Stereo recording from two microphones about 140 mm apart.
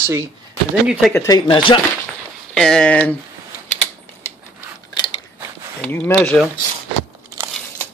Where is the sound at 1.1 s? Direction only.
20° left (ahead or behind).